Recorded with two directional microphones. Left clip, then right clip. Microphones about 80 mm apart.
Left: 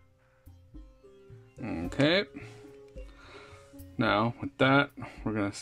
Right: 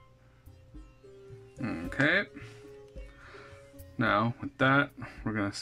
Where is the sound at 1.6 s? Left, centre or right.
Left.